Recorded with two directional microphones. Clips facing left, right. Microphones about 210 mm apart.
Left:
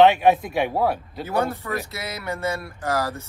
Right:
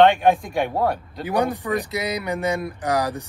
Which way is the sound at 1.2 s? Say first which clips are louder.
Right 3 dB; 15° right (ahead or behind).